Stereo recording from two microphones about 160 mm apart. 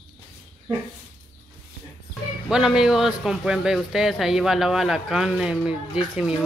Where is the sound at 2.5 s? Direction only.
5° right (ahead or behind).